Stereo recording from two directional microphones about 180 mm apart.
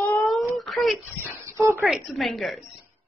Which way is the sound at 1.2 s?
15° right (ahead or behind).